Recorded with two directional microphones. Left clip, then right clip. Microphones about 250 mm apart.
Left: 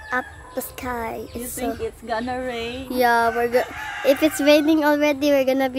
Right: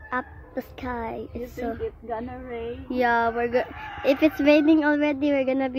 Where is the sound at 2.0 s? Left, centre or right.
Left.